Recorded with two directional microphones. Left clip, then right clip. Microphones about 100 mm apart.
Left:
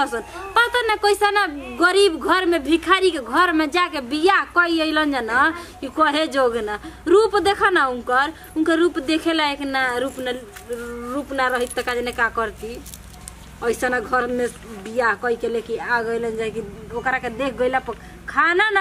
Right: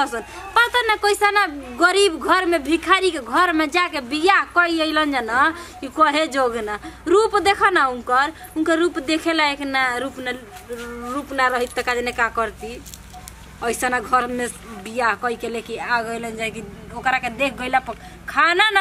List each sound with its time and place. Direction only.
0.0 s a woman's voice: 5° right (ahead or behind); by 18.8 s 25° right (ahead or behind)